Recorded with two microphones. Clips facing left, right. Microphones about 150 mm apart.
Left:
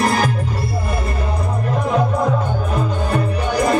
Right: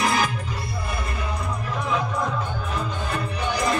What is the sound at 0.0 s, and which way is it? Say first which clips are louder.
Music: left 5 dB; 45° left (ahead or behind).